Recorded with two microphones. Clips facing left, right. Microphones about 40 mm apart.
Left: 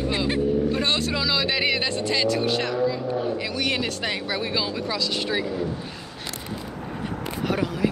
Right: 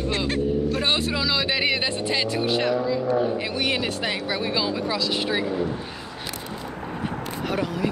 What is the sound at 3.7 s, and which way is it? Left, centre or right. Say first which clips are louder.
Speech: right 1 dB; centre.